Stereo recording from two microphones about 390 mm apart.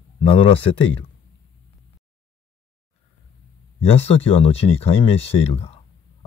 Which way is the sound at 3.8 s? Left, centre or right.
Centre.